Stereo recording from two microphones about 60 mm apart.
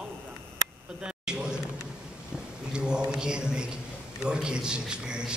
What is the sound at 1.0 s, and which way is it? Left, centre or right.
Speech, centre.